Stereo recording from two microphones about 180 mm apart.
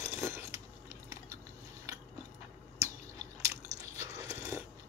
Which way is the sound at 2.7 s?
35° left (ahead or behind).